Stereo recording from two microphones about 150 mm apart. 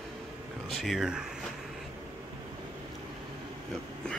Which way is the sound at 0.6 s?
Centre (ahead or behind).